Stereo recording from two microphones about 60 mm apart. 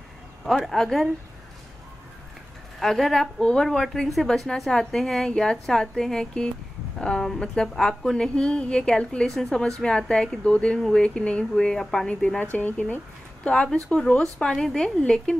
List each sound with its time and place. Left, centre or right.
0.5 s a woman's voice: centre
2.8 s a woman's voice: centre
12.2 s speech: left
13.4 s speech: centre